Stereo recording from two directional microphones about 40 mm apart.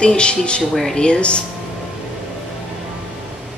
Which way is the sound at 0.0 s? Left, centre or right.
Left.